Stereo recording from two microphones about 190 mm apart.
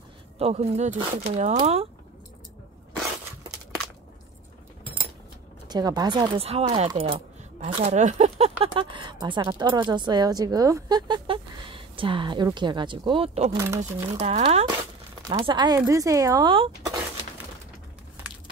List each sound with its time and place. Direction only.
0.4 s speech: 35° right (ahead or behind)
5.7 s speech: 20° right (ahead or behind)
13.5 s speech: 15° right (ahead or behind)
14.1 s speech: 30° right (ahead or behind)
15.2 s speech: 20° right (ahead or behind)